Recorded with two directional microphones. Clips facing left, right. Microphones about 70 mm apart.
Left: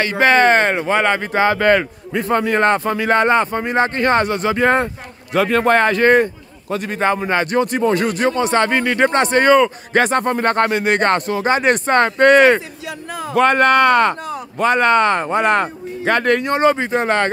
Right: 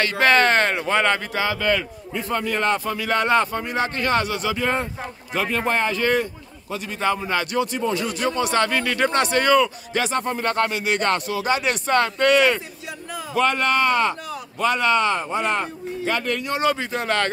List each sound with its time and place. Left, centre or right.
0.0 s a man's voice: left
8.2 s speech: left
9.9 s a man's voice: left
12.5 s speech: left
14.2 s a man's voice: left
16.6 s speech: left